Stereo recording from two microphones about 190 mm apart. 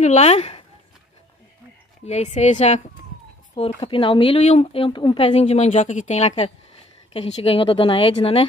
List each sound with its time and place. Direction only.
0.0 s speech: 35° left (ahead or behind)
2.0 s speech: 35° left (ahead or behind)